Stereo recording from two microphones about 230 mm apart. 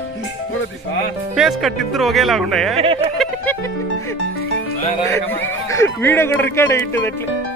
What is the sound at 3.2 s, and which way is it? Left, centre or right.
Music, centre.